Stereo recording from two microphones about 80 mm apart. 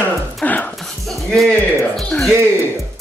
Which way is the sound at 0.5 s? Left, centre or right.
Centre.